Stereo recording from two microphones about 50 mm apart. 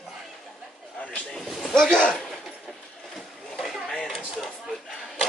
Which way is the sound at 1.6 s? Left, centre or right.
Centre.